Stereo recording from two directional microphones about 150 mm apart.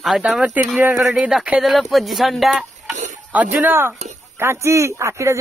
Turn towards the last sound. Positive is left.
turn(degrees=-20)  # may be behind; listen again after turning